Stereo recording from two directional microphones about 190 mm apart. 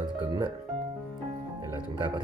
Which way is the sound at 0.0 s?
20° right (ahead or behind).